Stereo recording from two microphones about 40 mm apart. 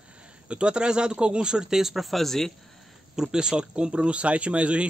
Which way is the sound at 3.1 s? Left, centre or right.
Centre.